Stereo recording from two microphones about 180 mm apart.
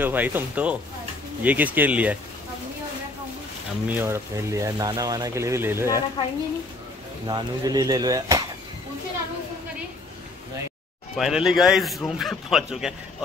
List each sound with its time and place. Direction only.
0.0 s speech: 10° right (ahead or behind)
3.8 s speech: 10° right (ahead or behind)
6.2 s a woman's voice: 25° left (ahead or behind)
7.2 s speech: 20° right (ahead or behind)
11.1 s a man's voice: centre (ahead or behind)